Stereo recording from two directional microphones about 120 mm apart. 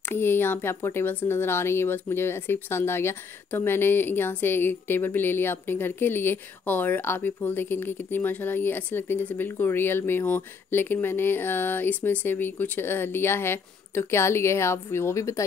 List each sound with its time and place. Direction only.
0.1 s speech: 20° left (ahead or behind)